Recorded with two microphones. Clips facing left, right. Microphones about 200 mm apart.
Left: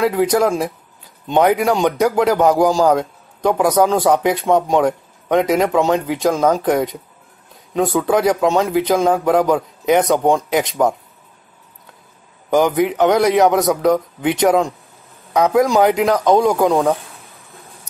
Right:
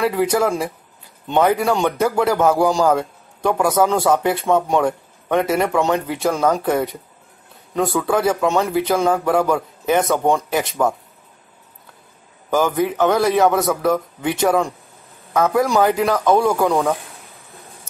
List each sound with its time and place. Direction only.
0.0 s speech: 15° left (ahead or behind)
12.4 s speech: 15° left (ahead or behind)